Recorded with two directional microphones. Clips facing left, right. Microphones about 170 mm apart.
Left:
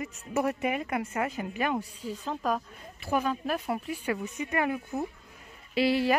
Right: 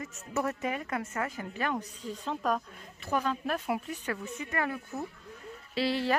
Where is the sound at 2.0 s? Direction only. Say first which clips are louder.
Left 1 dB; centre (ahead or behind).